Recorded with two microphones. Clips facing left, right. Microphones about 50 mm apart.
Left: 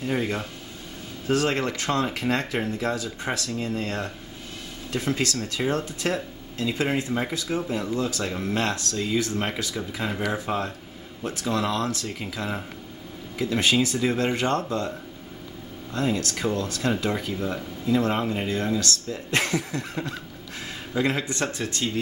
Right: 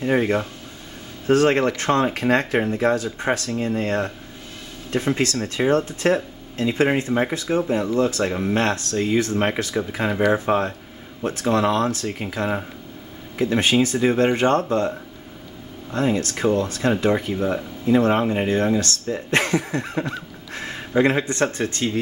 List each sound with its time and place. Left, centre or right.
0.0 s speech: right